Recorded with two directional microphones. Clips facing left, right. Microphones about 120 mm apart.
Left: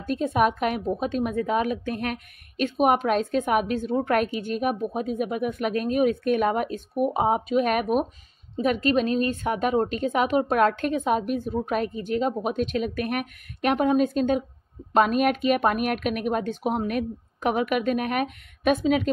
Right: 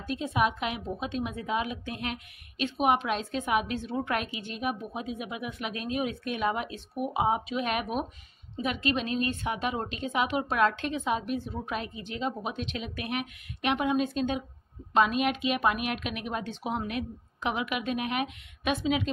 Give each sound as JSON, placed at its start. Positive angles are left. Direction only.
{"t": 0.0, "sound": "a woman's voice", "side_deg": 45}